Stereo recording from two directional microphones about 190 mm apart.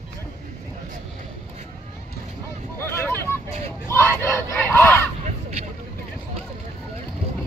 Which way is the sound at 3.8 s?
15° left (ahead or behind).